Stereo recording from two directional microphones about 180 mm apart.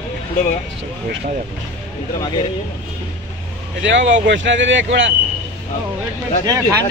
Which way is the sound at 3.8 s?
90° right.